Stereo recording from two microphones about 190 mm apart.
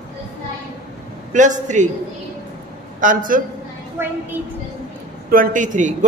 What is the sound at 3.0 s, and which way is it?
Speech, 45° right (ahead or behind).